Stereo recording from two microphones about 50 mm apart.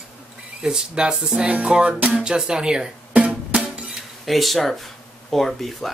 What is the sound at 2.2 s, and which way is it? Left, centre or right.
Speech, centre.